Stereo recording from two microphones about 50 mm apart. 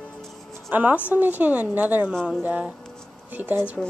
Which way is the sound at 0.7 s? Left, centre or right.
Right.